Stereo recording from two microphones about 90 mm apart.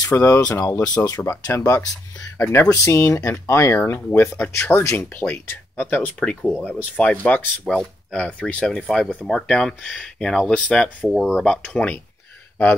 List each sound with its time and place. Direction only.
0.1 s speech: 35° left (ahead or behind)
6.1 s speech: 10° left (ahead or behind)
6.6 s speech: 20° left (ahead or behind)
7.6 s speech: 5° left (ahead or behind)
11.1 s speech: centre (ahead or behind)